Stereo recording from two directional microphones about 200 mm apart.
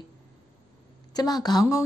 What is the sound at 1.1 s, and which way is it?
Speech, 20° left (ahead or behind).